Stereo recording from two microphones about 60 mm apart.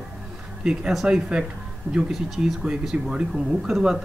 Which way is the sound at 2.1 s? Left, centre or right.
Centre.